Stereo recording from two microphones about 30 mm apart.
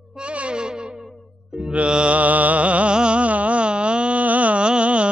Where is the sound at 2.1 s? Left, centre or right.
Right.